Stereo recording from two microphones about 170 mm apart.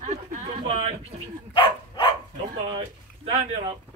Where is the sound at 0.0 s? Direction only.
40° right (ahead or behind).